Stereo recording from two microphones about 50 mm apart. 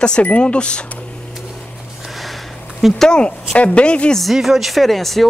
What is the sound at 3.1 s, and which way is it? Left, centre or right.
Speech, centre.